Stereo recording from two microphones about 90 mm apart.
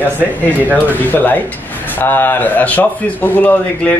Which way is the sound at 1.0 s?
20° left (ahead or behind).